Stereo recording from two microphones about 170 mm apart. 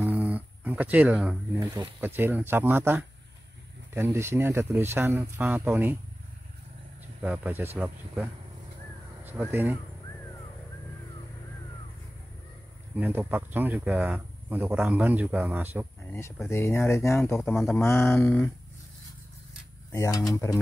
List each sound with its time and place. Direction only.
0.0 s a sound: 10° right (ahead or behind)
2.0 s speech: 10° right (ahead or behind)
7.2 s speech: 10° right (ahead or behind)
12.9 s speech: 10° right (ahead or behind)
16.1 s speech: 15° left (ahead or behind)
17.4 s speech: centre (ahead or behind)
17.8 s speech: 15° left (ahead or behind)
19.9 s speech: 20° left (ahead or behind)